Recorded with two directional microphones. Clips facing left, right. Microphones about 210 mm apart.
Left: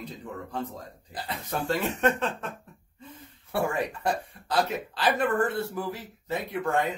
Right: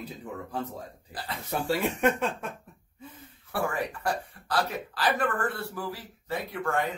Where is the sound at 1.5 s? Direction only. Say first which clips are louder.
Right 1 dB; 10° right (ahead or behind).